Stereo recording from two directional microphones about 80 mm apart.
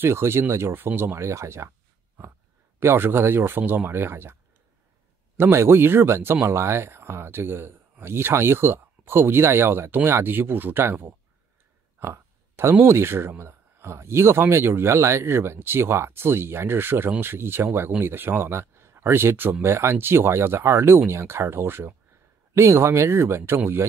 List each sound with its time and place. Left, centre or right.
0.0 s speech: right
2.8 s speech: right
5.4 s speech: right